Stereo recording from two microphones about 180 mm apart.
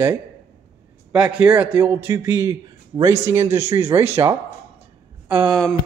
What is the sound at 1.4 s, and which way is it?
A man's voice, 10° right (ahead or behind).